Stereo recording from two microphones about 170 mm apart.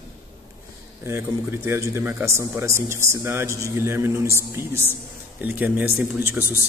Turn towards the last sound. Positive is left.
turn(degrees=-10)  # may be behind; listen again after turning